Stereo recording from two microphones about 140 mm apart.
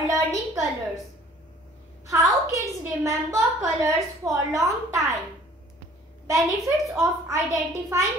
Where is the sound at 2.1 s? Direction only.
25° right (ahead or behind).